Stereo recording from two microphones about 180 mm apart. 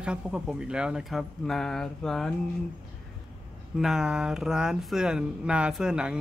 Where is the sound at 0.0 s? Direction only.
5° right (ahead or behind).